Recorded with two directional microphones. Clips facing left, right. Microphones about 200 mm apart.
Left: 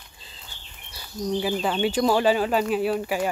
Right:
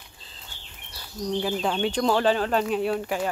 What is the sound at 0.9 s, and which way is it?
Speech, 5° left (ahead or behind).